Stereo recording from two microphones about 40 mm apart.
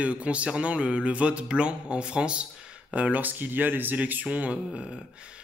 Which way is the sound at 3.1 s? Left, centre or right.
Right.